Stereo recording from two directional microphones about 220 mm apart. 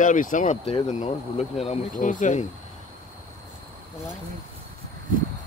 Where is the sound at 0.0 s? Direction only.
35° left (ahead or behind).